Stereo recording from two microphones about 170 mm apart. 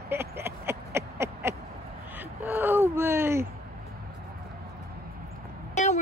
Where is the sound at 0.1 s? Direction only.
15° right (ahead or behind).